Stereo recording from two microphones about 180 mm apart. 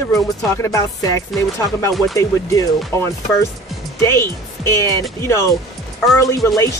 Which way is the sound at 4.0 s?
15° left (ahead or behind).